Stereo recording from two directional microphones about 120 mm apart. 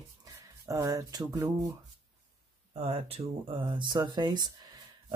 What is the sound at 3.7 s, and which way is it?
Speech, 40° right (ahead or behind).